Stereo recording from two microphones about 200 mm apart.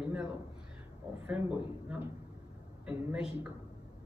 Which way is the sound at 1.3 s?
10° right (ahead or behind).